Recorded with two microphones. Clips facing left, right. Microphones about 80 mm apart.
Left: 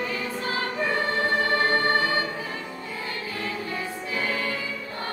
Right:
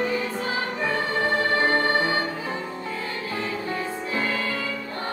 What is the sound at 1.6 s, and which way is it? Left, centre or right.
Music, right.